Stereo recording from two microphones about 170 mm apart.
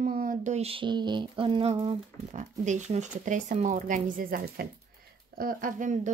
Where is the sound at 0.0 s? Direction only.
55° right (ahead or behind); by 2.0 s 35° right (ahead or behind).